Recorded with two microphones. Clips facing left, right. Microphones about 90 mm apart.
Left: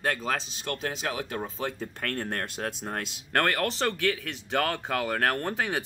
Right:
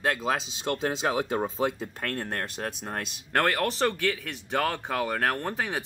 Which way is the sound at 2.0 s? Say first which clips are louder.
Even; 10° right (ahead or behind).